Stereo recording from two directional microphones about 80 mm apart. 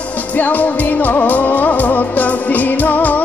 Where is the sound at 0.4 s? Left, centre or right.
Left.